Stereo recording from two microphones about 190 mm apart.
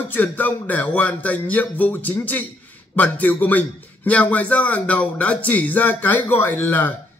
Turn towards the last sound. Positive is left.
turn(degrees=10)  # may be behind; listen again after turning